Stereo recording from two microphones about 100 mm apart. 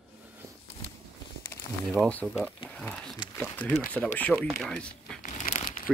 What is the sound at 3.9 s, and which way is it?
Speech, 15° left (ahead or behind).